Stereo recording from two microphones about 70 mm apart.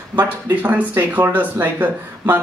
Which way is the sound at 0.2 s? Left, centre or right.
Right.